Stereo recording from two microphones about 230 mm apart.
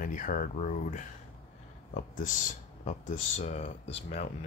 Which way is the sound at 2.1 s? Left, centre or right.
Left.